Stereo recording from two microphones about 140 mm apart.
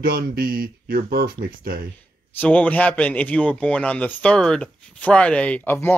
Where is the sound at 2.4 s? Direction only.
10° left (ahead or behind).